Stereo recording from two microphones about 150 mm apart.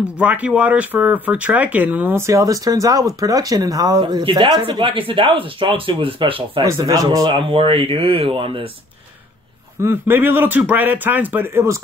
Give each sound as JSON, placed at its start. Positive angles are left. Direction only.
{"t": 0.2, "sound": "speech", "side_deg": -10}
{"t": 6.6, "sound": "speech", "side_deg": -20}
{"t": 9.8, "sound": "speech", "side_deg": -15}